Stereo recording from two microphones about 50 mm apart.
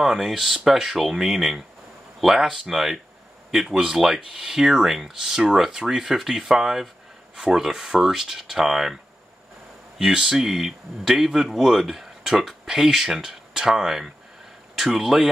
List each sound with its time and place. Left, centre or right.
0.0 s speech: centre